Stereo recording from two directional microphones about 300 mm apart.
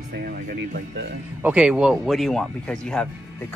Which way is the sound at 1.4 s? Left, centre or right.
Centre.